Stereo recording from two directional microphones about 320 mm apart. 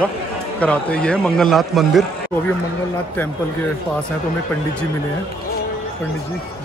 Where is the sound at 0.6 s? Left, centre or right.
Centre.